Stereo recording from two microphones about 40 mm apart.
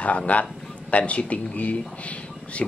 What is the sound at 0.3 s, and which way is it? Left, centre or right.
Speech, left.